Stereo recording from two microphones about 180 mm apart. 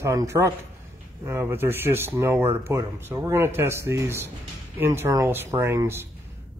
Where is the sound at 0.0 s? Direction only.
15° right (ahead or behind).